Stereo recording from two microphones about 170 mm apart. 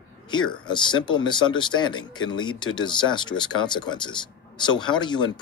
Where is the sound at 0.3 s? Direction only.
25° left (ahead or behind).